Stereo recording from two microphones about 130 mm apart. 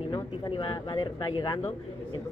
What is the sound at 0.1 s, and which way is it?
Speech, 35° left (ahead or behind).